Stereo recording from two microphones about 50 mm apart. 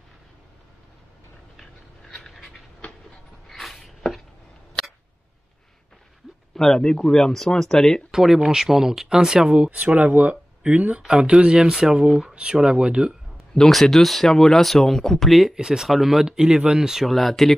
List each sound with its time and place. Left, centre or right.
2.3 s dog: centre
3.4 s a sound: centre
6.5 s speech: centre
8.1 s speech: centre
9.9 s speech: right
11.0 s speech: centre
13.6 s speech: centre
15.5 s speech: centre
16.3 s speech: centre
17.0 s speech: centre